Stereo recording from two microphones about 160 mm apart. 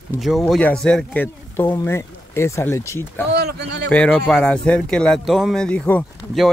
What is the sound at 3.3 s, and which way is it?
Speech, 90° right.